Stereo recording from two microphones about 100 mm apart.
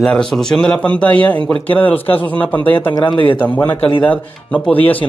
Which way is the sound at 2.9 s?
55° left (ahead or behind).